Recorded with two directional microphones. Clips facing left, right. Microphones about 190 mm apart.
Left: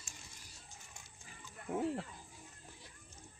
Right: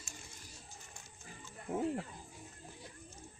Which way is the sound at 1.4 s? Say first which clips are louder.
Right 1 dB; 15° right (ahead or behind).